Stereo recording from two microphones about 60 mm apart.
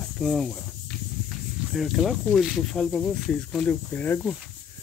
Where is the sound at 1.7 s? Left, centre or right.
Centre.